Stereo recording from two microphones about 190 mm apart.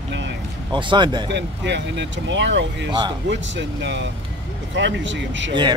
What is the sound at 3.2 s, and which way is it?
Speech, 70° right (ahead or behind).